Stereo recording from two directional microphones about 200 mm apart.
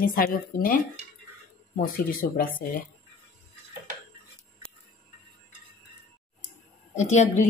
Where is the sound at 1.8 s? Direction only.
45° left (ahead or behind).